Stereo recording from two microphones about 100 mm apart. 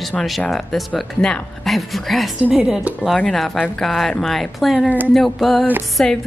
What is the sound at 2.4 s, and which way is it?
A woman's voice, 10° right (ahead or behind).